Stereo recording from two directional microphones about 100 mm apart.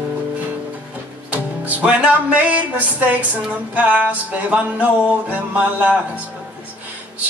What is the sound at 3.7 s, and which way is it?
Speech, 15° right (ahead or behind).